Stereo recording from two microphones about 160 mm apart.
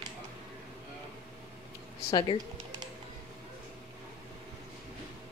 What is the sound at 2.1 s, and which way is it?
Speech, 30° left (ahead or behind).